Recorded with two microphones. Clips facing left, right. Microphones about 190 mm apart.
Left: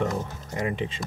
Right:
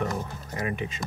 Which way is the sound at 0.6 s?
25° left (ahead or behind).